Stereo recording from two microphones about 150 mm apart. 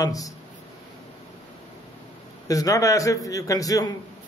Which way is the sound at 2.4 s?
25° left (ahead or behind).